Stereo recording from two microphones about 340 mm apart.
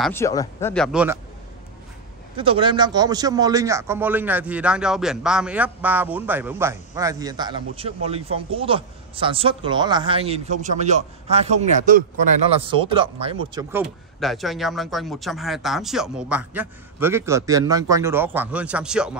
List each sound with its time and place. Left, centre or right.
0.0 s speech: centre
2.3 s speech: centre